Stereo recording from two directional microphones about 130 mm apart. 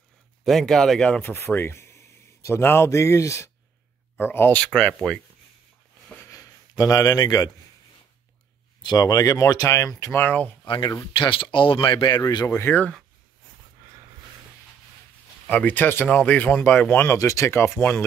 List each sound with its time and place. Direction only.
0.5 s a man's voice: centre (ahead or behind)
6.2 s a sound: 25° left (ahead or behind)
8.8 s speech: 30° left (ahead or behind)
10.1 s speech: 15° left (ahead or behind)
10.6 s speech: 35° left (ahead or behind)
12.4 s speech: 20° left (ahead or behind)
15.4 s speech: 15° left (ahead or behind)